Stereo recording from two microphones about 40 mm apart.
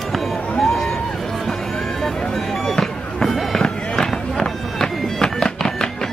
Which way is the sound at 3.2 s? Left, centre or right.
Centre.